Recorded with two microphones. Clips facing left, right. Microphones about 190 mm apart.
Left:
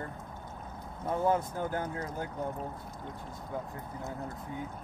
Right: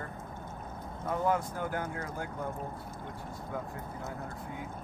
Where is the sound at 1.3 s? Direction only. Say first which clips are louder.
Left 1 dB; 20° left (ahead or behind).